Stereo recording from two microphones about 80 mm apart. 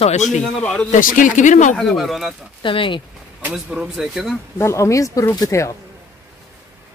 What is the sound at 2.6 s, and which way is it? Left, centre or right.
Speech, left.